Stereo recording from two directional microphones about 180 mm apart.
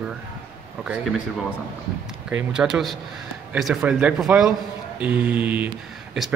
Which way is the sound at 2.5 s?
5° right (ahead or behind).